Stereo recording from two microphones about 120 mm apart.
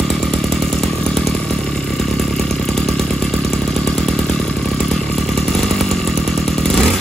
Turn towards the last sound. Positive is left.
turn(degrees=5)  # may be behind; listen again after turning